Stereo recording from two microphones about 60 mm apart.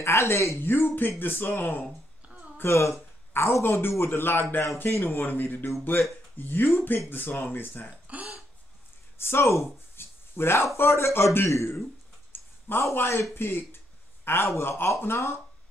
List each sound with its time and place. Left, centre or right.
0.0 s speech: left
0.7 s speech: left
8.1 s burping: right
9.2 s speech: left
9.9 s a sound: left
10.8 s speech: left
12.3 s a sound: left
12.9 s speech: left